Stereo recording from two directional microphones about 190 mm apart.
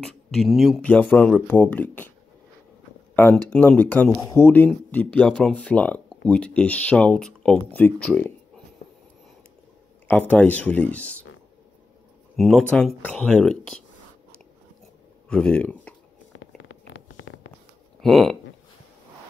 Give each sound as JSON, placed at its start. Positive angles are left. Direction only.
{"t": 0.1, "sound": "speech", "side_deg": 0}
{"t": 3.2, "sound": "speech", "side_deg": 10}
{"t": 10.0, "sound": "speech", "side_deg": 10}
{"t": 12.4, "sound": "speech", "side_deg": 0}
{"t": 15.2, "sound": "speech", "side_deg": 5}
{"t": 16.3, "sound": "a sound", "side_deg": 90}
{"t": 18.0, "sound": "speech", "side_deg": 0}